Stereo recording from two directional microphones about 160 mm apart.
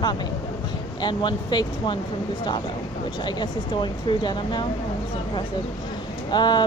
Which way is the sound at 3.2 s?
30° left (ahead or behind).